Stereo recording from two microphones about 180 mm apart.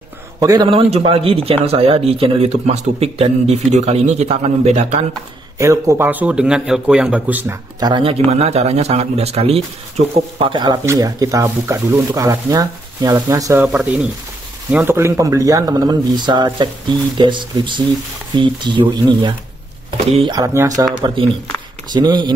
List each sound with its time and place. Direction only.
0.4 s a man's voice: 20° right (ahead or behind)
5.6 s speech: 15° right (ahead or behind)
7.8 s a man's voice: 30° right (ahead or behind)
13.7 s a man's voice: 5° right (ahead or behind); by 22.3 s 25° right (ahead or behind)